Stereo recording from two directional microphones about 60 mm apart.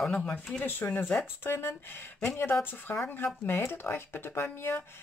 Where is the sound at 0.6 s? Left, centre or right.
Left.